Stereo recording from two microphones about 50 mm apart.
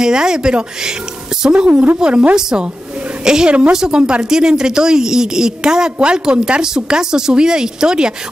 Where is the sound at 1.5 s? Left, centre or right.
Right.